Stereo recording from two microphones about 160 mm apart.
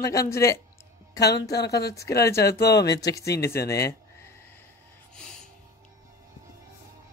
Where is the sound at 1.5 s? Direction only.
90° left.